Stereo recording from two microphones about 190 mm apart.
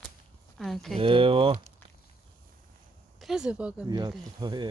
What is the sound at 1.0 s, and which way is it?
Speech, 30° right (ahead or behind).